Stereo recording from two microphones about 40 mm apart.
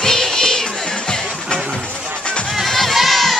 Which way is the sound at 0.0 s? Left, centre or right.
Centre.